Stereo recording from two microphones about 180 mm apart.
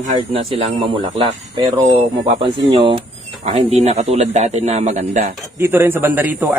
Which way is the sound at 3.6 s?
35° right (ahead or behind).